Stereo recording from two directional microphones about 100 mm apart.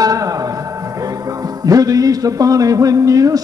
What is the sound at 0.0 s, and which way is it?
Music, 35° right (ahead or behind).